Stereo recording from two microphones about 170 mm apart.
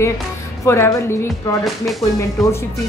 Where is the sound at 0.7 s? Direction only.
15° left (ahead or behind).